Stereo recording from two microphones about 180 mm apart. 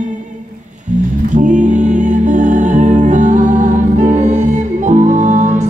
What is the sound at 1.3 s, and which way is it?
Music, 45° right (ahead or behind).